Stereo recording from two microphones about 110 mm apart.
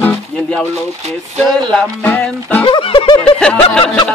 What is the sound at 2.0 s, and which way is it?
Music, 15° left (ahead or behind).